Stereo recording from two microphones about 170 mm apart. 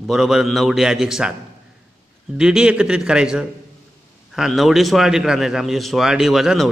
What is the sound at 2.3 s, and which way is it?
A man's voice, 5° right (ahead or behind).